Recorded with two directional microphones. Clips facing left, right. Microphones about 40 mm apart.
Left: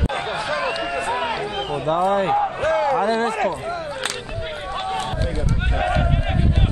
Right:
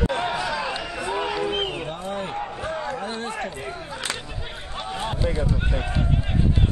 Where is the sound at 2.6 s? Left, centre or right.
Left.